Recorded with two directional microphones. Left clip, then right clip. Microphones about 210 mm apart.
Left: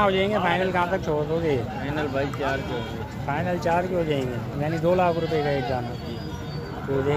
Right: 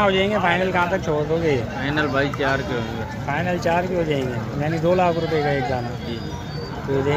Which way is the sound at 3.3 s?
5° right (ahead or behind).